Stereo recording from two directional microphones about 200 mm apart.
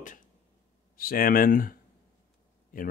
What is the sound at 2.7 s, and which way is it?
Speech, 45° left (ahead or behind).